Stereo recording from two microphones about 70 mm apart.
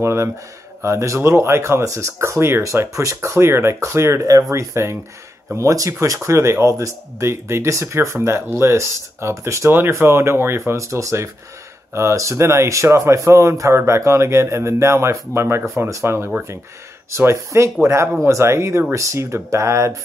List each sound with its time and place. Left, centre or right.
0.0 s speech: right